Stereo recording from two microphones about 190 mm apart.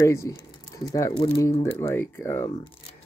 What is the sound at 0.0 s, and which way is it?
Speech, 15° left (ahead or behind).